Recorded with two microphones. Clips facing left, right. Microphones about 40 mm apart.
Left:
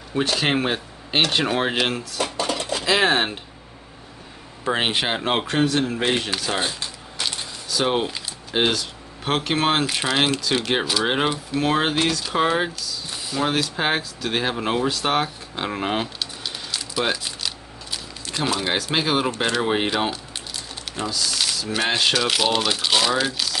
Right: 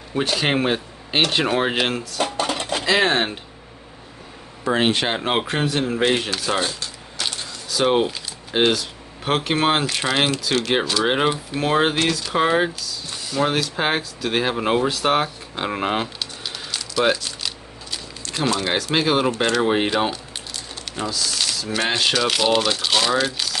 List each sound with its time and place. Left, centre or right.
0.1 s speech: centre
2.2 s a sound: right
2.8 s speech: centre
4.6 s speech: centre
6.6 s a sound: centre
7.7 s speech: centre
16.2 s a sound: centre
17.9 s speech: centre
23.3 s crumpling: centre